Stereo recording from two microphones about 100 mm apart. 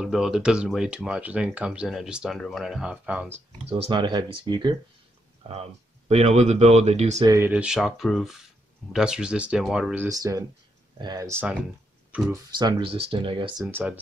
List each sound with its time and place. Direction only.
0.0 s speech: 5° right (ahead or behind)
3.9 s speech: 45° right (ahead or behind)
5.5 s speech: 90° right
7.4 s speech: 10° right (ahead or behind)
10.0 s speech: 35° right (ahead or behind)
12.5 s speech: 45° right (ahead or behind)
12.8 s speech: 70° right (ahead or behind)
13.7 s speech: 20° right (ahead or behind)